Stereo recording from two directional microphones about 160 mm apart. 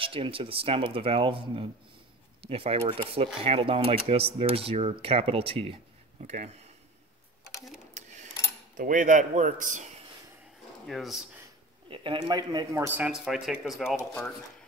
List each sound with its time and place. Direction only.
0.0 s speech: 35° right (ahead or behind)
6.2 s speech: 50° right (ahead or behind)
7.9 s dishes: 50° right (ahead or behind)
8.7 s speech: 55° right (ahead or behind)
10.9 s speech: centre (ahead or behind)
11.9 s speech: 30° right (ahead or behind); by 13.9 s 5° right (ahead or behind)